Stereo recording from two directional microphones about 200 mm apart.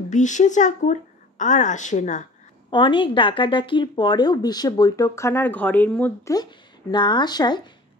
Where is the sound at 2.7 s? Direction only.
25° left (ahead or behind); by 6.3 s 5° left (ahead or behind).